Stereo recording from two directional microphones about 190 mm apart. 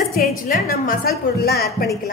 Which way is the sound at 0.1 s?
45° left (ahead or behind).